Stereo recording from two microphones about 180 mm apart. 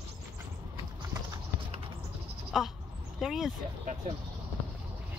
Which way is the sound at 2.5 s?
Centre (ahead or behind).